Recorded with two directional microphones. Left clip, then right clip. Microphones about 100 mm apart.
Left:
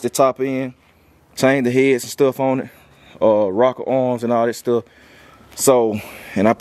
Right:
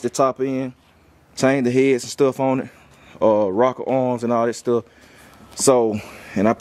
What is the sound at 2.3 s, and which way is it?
Speech, 5° left (ahead or behind).